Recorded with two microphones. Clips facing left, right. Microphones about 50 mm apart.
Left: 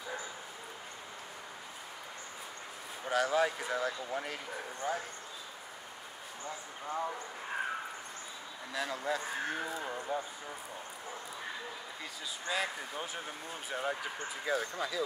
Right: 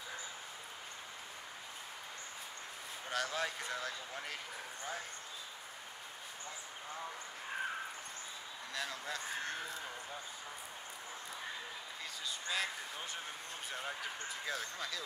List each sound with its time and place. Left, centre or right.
3.1 s speech: centre
6.4 s speech: left
8.7 s speech: centre
9.8 s speech: left
12.4 s speech: centre